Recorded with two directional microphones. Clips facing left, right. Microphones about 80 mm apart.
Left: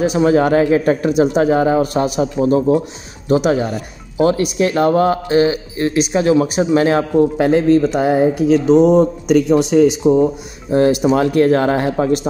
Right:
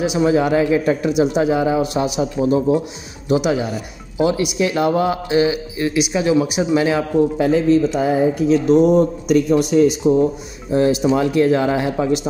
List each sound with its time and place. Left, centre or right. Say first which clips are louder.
0.0 s a man's voice: left 3 dB; left
8.7 s a man's voice: left 3 dB; left
10.7 s speech: left 3 dB; left